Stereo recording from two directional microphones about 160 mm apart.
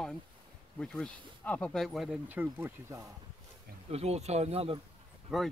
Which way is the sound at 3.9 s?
40° right (ahead or behind).